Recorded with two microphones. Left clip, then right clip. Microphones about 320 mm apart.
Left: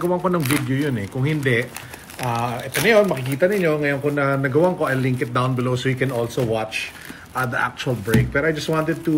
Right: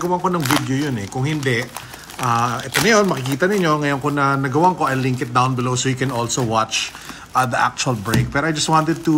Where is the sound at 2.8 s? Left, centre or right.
Right.